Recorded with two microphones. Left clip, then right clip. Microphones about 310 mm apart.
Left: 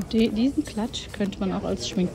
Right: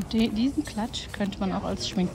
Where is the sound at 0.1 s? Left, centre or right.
Centre.